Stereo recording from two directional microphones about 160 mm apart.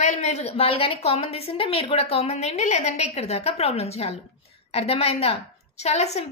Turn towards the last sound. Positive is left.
turn(degrees=45)  # may be behind; listen again after turning